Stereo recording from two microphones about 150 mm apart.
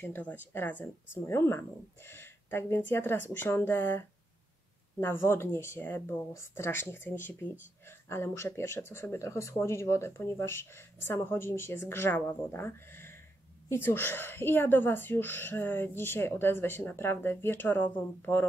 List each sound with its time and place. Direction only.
0.0 s speech: 10° left (ahead or behind)
5.2 s speech: 15° left (ahead or behind)